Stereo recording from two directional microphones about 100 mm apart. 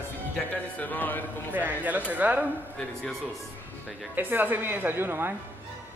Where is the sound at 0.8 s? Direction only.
15° left (ahead or behind).